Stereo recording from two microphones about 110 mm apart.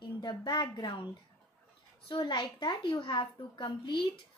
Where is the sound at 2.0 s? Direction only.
45° left (ahead or behind).